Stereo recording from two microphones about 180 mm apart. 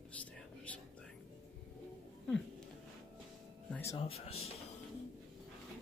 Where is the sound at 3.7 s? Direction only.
15° left (ahead or behind).